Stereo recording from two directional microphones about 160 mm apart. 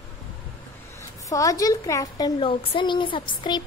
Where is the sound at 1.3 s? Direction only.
20° left (ahead or behind).